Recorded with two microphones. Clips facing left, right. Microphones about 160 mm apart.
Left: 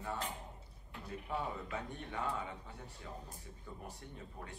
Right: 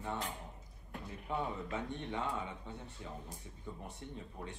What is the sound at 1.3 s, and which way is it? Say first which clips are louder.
Speech: right 2 dB; 20° right (ahead or behind).